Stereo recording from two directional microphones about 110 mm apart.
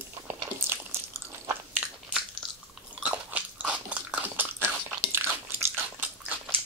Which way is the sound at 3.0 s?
15° right (ahead or behind).